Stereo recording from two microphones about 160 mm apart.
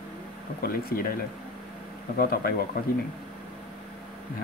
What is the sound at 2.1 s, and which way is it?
Speech, 70° left (ahead or behind).